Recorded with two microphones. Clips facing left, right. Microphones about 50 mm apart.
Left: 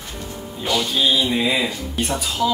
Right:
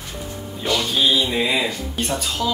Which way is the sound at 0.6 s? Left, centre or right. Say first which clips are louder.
Even; centre.